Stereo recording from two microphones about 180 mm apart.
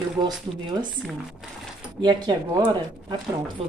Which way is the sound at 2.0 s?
25° right (ahead or behind).